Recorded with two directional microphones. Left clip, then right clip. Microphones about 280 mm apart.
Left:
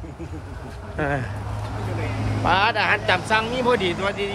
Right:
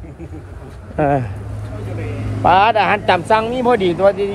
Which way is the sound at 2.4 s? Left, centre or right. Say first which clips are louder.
Right 8 dB; right.